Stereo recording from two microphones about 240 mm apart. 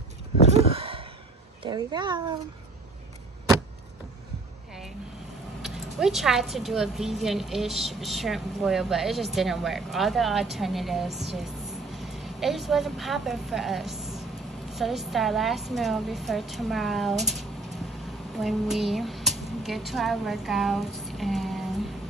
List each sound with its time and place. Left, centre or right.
0.6 s a sound: right
1.6 s speech: centre
5.6 s a woman's voice: centre